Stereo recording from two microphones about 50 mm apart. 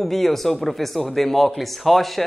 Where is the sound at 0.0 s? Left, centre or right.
Centre.